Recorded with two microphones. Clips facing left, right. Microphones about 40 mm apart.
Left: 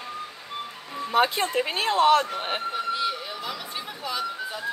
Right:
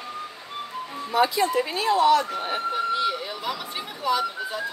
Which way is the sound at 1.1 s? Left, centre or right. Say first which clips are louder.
Right 1 dB; left.